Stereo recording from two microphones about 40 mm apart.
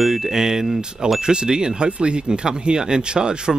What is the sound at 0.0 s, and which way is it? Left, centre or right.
Speech, centre.